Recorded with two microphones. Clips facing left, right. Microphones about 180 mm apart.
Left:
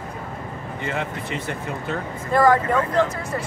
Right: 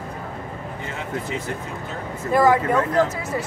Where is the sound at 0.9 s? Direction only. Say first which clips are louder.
Left 2 dB; 65° left (ahead or behind).